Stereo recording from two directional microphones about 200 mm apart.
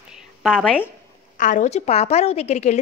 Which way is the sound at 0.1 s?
Centre (ahead or behind).